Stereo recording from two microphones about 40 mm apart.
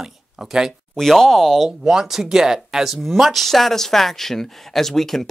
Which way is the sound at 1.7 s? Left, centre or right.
Centre.